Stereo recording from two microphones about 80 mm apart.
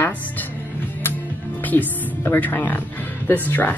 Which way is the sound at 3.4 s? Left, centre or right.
Left.